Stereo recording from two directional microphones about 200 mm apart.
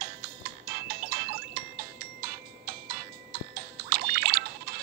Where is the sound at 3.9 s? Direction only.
50° right (ahead or behind).